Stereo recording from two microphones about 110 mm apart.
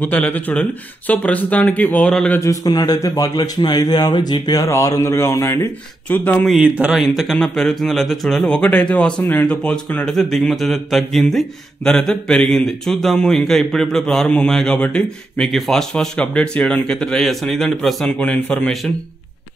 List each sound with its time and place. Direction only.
0.0 s speech: 15° left (ahead or behind)
2.3 s a man's voice: 30° left (ahead or behind)
6.0 s speech: 15° left (ahead or behind)
6.4 s speech: 5° right (ahead or behind)
7.2 s speech: 5° left (ahead or behind)